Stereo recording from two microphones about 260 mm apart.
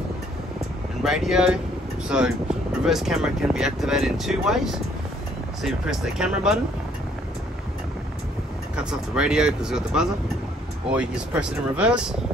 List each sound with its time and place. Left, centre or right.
1.0 s speech: centre
8.7 s speech: centre